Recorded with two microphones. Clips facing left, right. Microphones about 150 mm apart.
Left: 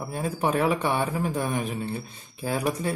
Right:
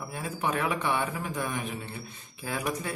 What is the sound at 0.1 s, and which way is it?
Speech, 35° left (ahead or behind).